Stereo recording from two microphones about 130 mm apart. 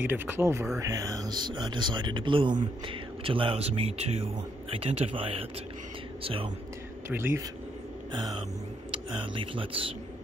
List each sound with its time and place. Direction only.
0.0 s speech: 15° right (ahead or behind); by 6.5 s 45° right (ahead or behind)
7.1 s speech: 15° right (ahead or behind)
8.1 s speech: 40° right (ahead or behind)